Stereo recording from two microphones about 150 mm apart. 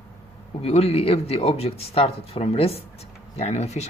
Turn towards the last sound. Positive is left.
turn(degrees=45)  # may be behind; listen again after turning